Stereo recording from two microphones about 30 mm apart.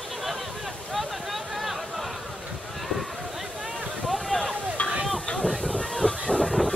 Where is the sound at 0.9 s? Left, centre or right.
Centre.